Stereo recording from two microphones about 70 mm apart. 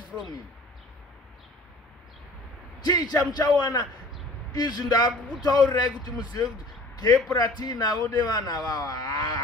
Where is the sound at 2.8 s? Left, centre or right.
Left.